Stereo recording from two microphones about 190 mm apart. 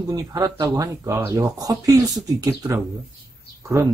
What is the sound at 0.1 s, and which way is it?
Speech, 20° right (ahead or behind).